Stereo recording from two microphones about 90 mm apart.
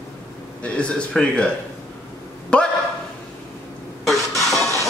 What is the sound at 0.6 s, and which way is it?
Speech, 10° left (ahead or behind).